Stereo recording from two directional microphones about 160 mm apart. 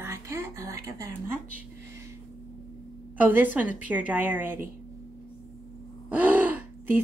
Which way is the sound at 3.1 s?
10° right (ahead or behind).